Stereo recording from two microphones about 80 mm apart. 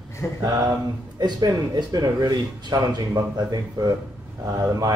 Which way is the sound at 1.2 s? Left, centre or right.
Right.